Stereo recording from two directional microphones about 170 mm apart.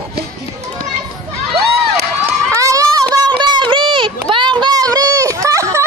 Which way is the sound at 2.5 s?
20° right (ahead or behind).